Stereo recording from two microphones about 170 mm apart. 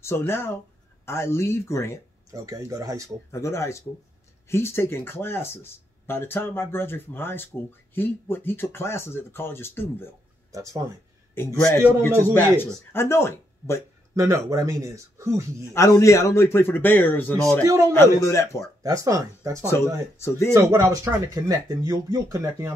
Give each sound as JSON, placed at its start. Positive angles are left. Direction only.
{"t": 0.0, "sound": "speech", "side_deg": 15}
{"t": 2.3, "sound": "speech", "side_deg": -20}
{"t": 3.3, "sound": "speech", "side_deg": 15}
{"t": 10.5, "sound": "speech", "side_deg": -20}
{"t": 11.3, "sound": "speech", "side_deg": 15}
{"t": 14.1, "sound": "speech", "side_deg": -20}
{"t": 15.7, "sound": "speech", "side_deg": 20}
{"t": 17.6, "sound": "speech", "side_deg": -15}
{"t": 17.9, "sound": "speech", "side_deg": 15}
{"t": 18.8, "sound": "speech", "side_deg": -20}
{"t": 20.2, "sound": "speech", "side_deg": 15}
{"t": 20.7, "sound": "speech", "side_deg": -20}